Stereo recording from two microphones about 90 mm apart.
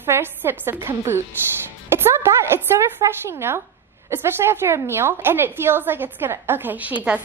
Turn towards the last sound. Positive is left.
turn(degrees=-20)  # may be behind; listen again after turning